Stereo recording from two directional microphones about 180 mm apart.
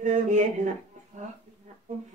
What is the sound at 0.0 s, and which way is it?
Speech, 45° right (ahead or behind).